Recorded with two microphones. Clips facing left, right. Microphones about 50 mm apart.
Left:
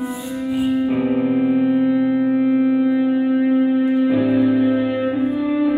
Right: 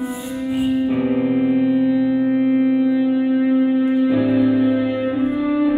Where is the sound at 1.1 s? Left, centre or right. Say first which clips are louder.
Even; right.